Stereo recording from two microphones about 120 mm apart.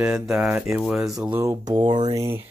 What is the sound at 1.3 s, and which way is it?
Mantra, 25° right (ahead or behind).